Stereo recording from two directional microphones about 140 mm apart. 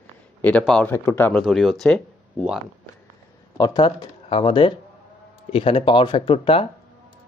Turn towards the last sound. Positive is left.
turn(degrees=40)  # may be behind; listen again after turning